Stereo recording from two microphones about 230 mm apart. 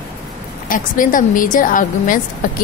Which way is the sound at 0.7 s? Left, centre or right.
Left.